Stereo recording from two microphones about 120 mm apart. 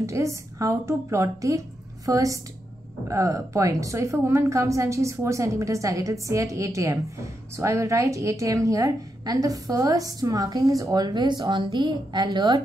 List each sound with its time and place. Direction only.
0.0 s a woman's voice: 25° right (ahead or behind)